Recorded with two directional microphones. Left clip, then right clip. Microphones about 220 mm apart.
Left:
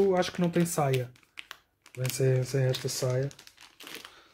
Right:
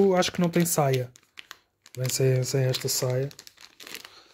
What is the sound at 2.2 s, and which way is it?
Speech, 45° right (ahead or behind).